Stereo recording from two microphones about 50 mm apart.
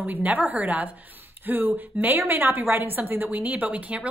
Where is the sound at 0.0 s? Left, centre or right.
Right.